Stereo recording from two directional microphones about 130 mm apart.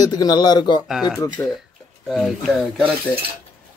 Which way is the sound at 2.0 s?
5° right (ahead or behind).